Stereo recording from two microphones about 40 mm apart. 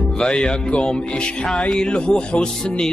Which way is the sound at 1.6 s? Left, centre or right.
Left.